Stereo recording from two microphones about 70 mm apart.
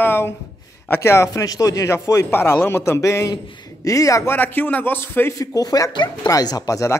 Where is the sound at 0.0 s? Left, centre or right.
Left.